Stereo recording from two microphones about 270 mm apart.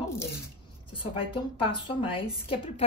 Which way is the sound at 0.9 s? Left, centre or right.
Centre.